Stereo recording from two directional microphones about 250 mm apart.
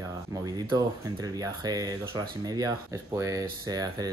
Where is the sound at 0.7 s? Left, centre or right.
Centre.